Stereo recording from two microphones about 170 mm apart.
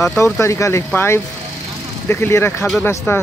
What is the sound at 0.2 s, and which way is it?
Speech, 15° left (ahead or behind).